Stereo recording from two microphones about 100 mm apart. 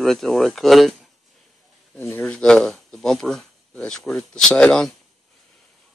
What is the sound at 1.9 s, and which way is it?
Speech, 20° left (ahead or behind).